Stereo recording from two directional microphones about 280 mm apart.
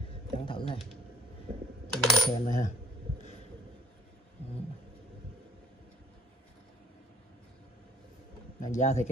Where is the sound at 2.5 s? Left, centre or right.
Left.